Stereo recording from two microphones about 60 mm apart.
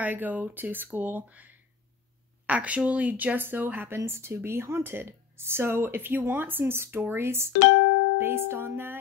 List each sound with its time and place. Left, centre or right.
0.0 s speech: right